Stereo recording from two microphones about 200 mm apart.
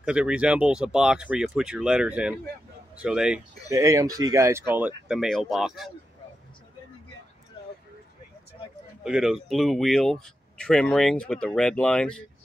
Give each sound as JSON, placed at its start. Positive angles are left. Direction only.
{"t": 0.0, "sound": "speech", "side_deg": -5}
{"t": 9.0, "sound": "speech", "side_deg": -5}